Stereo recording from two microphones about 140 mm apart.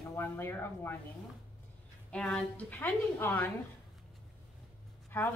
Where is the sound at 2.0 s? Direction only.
5° left (ahead or behind).